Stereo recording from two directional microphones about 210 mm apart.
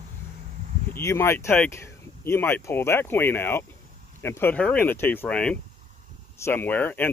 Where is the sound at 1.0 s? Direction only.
10° left (ahead or behind).